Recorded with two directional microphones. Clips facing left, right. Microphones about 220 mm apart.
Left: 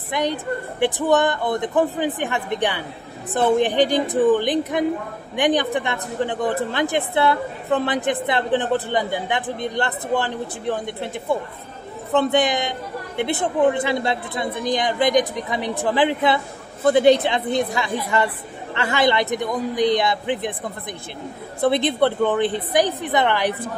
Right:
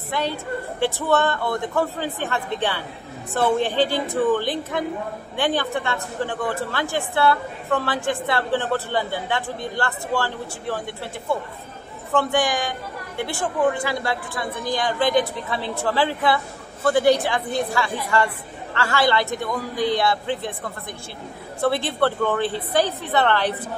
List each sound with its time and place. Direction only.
0.1 s a woman's voice: 15° left (ahead or behind)